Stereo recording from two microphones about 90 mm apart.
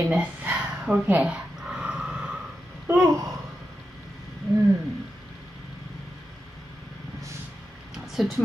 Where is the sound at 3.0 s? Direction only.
40° right (ahead or behind).